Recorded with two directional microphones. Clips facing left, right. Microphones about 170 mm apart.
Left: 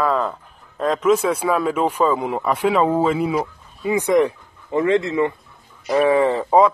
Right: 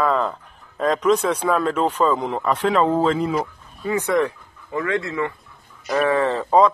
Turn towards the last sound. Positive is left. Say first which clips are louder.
# left 2 dB
turn(degrees=10)  # may be behind; listen again after turning